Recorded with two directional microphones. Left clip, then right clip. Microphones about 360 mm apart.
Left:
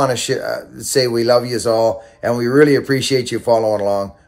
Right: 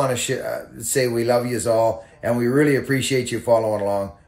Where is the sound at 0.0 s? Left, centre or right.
Centre.